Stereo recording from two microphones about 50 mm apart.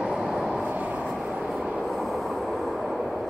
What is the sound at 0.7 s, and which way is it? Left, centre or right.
Vehicle, right.